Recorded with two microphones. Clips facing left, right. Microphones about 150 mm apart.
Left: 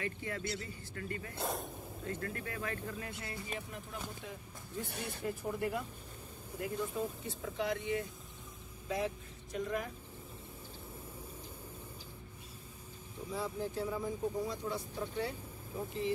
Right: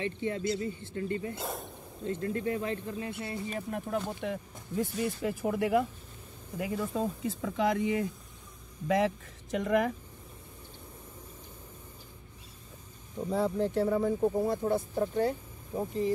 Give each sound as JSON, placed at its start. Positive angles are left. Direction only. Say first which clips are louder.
{"t": 0.0, "sound": "speech", "louder": "right 8 dB", "side_deg": -25}
{"t": 1.4, "sound": "speech", "louder": "right 1 dB", "side_deg": 0}
{"t": 2.0, "sound": "speech", "louder": "right 10 dB", "side_deg": -25}
{"t": 3.5, "sound": "speech", "louder": "right 11 dB", "side_deg": -60}
{"t": 8.8, "sound": "speech", "louder": "right 9 dB", "side_deg": -90}
{"t": 13.3, "sound": "speech", "louder": "right 9 dB", "side_deg": -65}